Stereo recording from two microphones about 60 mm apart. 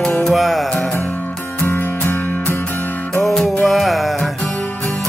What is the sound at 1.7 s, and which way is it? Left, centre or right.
Music, left.